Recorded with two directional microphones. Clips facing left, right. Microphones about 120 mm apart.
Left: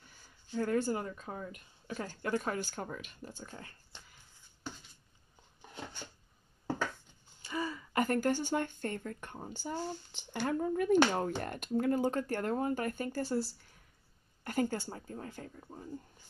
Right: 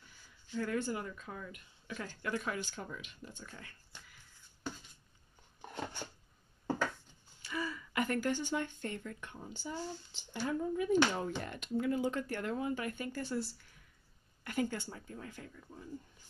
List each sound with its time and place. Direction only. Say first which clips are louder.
0.5 s speech: left 4 dB; 35° left (ahead or behind)
7.4 s a sound: left 2 dB; 30° left (ahead or behind)
8.0 s speech: left 3 dB; 45° left (ahead or behind)